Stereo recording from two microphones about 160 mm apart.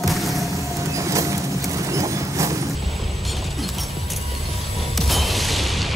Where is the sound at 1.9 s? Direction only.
20° right (ahead or behind).